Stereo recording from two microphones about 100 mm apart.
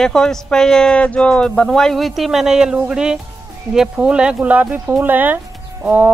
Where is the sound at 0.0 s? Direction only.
5° left (ahead or behind).